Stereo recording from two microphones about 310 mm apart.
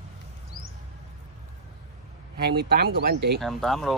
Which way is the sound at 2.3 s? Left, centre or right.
Right.